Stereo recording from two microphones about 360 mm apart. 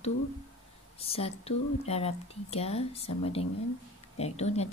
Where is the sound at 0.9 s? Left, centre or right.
Centre.